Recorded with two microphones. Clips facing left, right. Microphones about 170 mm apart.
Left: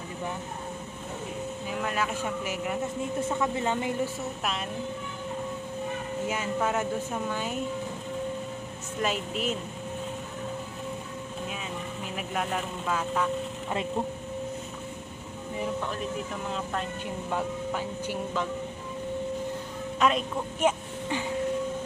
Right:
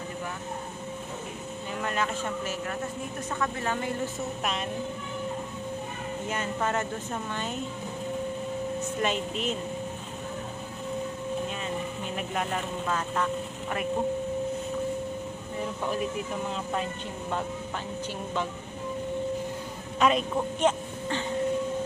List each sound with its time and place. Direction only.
1.8 s speech: 5° left (ahead or behind)
6.2 s speech: 5° left (ahead or behind)
9.0 s speech: 5° left (ahead or behind)
12.2 s speech: centre (ahead or behind)
20.0 s speech: centre (ahead or behind)